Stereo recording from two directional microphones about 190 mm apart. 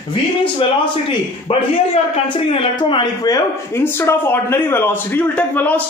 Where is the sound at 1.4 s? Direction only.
30° left (ahead or behind).